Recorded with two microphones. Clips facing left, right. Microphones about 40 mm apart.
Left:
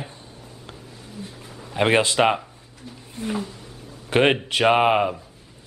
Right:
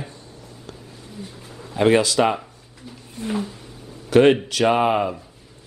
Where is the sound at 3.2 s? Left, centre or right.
Centre.